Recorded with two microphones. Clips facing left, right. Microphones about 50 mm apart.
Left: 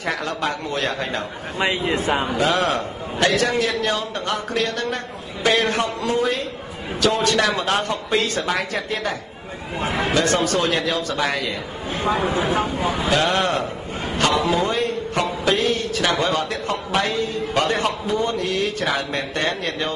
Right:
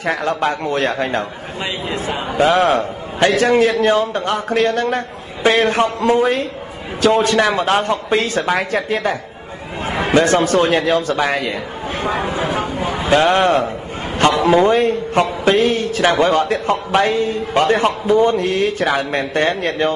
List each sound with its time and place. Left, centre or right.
0.0 s a man's voice: centre
1.6 s a man's voice: left
2.3 s a man's voice: right
5.9 s a man's voice: right
7.0 s a man's voice: right
13.1 s a man's voice: right
14.4 s a man's voice: right